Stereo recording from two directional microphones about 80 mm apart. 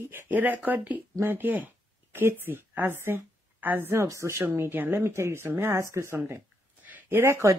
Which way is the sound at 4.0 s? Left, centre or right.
Right.